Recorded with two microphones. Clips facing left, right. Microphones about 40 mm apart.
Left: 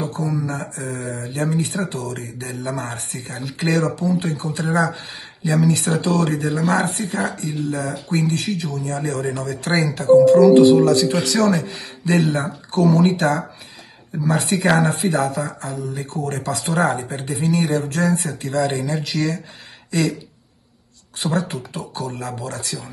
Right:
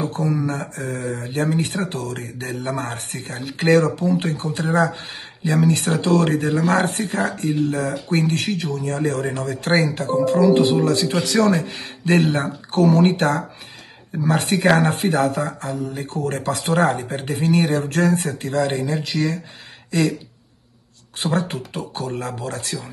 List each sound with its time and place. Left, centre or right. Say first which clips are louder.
0.0 s speech: right 2 dB; right
10.2 s speech: left 3 dB; right
18.9 s speech: even; centre
19.9 s speech: right 1 dB; right
21.2 s speech: even; right